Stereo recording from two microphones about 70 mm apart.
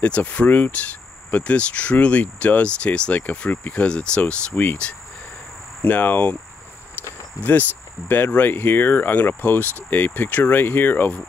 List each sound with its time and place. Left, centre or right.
0.0 s speech: centre
8.1 s speech: left